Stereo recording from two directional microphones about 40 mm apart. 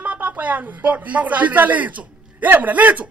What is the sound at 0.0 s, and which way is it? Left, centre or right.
A man's voice, right.